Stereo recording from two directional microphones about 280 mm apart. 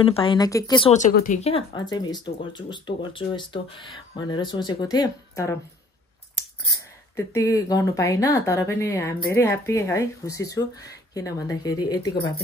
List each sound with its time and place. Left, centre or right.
0.0 s speech: centre
7.2 s speech: centre